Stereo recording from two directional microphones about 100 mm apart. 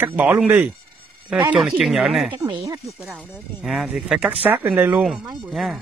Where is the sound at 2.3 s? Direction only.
50° right (ahead or behind).